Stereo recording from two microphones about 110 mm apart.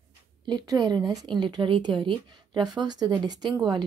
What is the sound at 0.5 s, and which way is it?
Speech, 40° right (ahead or behind).